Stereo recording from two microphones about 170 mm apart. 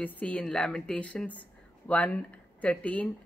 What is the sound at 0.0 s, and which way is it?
Speech, 10° left (ahead or behind).